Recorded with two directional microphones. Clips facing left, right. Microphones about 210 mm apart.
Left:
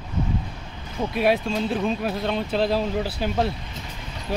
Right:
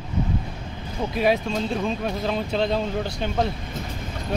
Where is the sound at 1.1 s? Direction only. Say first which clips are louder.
Even; centre (ahead or behind).